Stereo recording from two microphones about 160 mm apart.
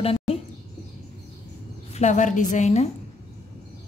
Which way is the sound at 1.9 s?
50° left (ahead or behind).